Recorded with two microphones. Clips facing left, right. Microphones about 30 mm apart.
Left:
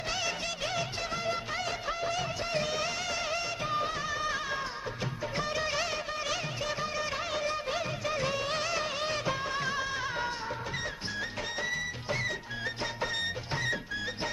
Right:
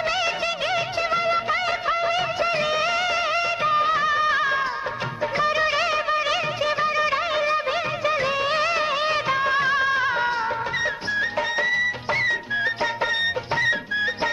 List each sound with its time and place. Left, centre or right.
0.1 s music of bollywood: right
10.8 s music: right